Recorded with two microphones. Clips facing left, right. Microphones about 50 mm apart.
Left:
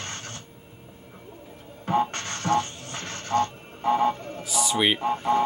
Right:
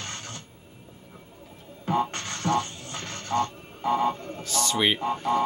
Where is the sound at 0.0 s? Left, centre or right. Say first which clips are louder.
Left 1 dB; left.